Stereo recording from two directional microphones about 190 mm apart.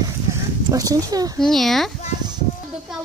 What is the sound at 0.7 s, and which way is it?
Speech, 20° right (ahead or behind).